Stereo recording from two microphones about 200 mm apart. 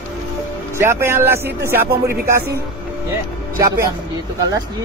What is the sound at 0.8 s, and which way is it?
Speech, 10° right (ahead or behind).